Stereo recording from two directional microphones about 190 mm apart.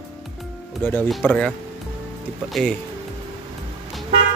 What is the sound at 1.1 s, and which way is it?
Speech, centre (ahead or behind).